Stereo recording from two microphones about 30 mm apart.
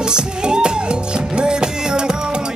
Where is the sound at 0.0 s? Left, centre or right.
Right.